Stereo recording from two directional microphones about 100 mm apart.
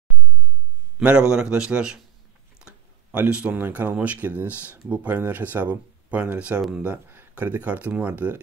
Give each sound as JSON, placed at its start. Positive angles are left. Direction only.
{"t": 0.9, "sound": "speech", "side_deg": -10}